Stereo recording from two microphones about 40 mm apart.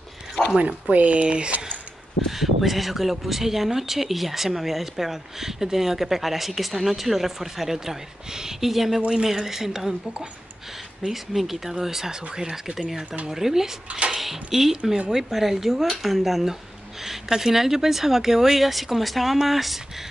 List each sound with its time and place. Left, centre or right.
0.6 s speech: right
2.2 s speech: centre
11.1 s speech: centre
13.8 s a child's voice: right
14.1 s speech: centre